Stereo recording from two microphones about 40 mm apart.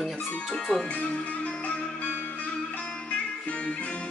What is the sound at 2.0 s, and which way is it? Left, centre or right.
Music, left.